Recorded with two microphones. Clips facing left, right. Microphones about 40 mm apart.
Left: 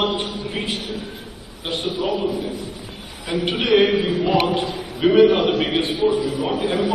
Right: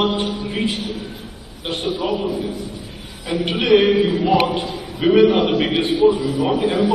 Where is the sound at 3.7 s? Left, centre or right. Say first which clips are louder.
Right 2 dB; left.